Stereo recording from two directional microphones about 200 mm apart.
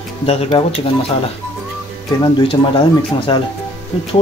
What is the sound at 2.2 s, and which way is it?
Speech, 25° left (ahead or behind).